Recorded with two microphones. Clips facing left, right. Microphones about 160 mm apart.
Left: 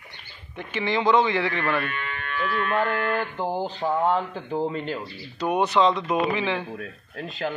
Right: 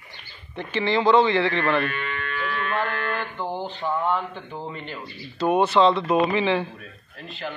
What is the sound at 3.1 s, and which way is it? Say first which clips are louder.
Speech: left 3 dB; 45° left (ahead or behind).